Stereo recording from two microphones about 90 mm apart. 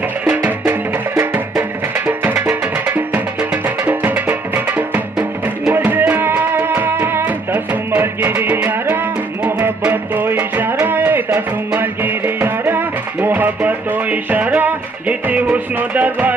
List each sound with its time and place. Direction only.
0.2 s music: 20° right (ahead or behind)